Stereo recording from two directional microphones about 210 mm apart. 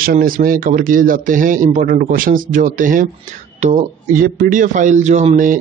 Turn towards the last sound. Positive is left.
turn(degrees=-35)  # may be behind; listen again after turning